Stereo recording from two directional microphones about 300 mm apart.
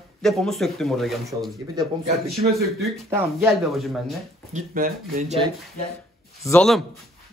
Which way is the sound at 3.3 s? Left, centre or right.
Centre.